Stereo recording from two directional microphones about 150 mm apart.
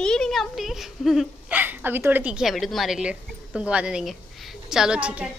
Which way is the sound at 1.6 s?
10° right (ahead or behind).